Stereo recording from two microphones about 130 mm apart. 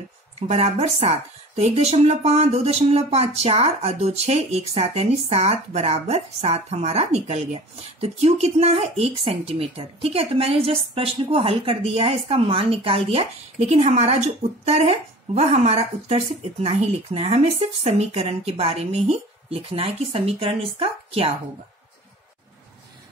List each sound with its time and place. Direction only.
0.4 s speech: 55° right (ahead or behind)